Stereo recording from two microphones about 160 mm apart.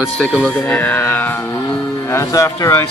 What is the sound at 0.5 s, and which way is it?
Speech, 10° left (ahead or behind).